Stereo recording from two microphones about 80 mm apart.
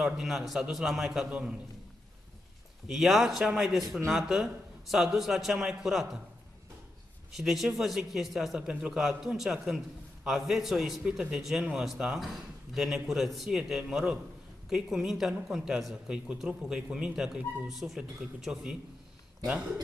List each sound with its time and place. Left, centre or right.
0.0 s a man's voice: centre
2.9 s a man's voice: centre
7.3 s a man's voice: centre